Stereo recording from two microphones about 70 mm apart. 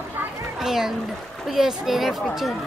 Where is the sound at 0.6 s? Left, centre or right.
Centre.